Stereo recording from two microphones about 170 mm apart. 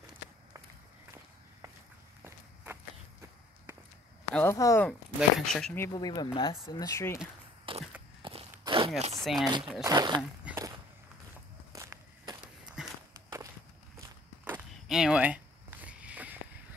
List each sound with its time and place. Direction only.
2.2 s walk: 15° right (ahead or behind)
4.4 s speech: 15° left (ahead or behind)
5.4 s speech: 5° left (ahead or behind)
5.8 s speech: 25° left (ahead or behind)
7.7 s walk: 30° right (ahead or behind)
9.2 s speech: centre (ahead or behind)
9.8 s speech: 25° right (ahead or behind)
10.4 s walk: 15° right (ahead or behind)
11.7 s walk: 15° right (ahead or behind)
12.8 s walk: 5° right (ahead or behind)
13.9 s walk: 10° right (ahead or behind)
14.9 s a sound: 5° right (ahead or behind)